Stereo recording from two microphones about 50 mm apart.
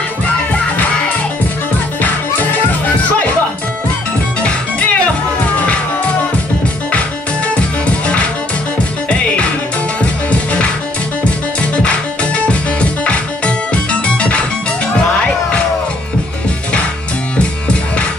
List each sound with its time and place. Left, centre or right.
4.4 s music: left
6.9 s music: left
10.3 s music: left
11.8 s music: left